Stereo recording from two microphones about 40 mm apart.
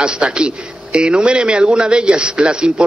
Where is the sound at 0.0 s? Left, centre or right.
Right.